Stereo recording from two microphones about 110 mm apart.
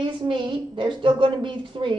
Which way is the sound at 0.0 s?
50° right (ahead or behind).